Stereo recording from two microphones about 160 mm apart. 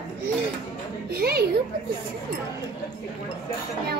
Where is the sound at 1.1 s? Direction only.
80° right.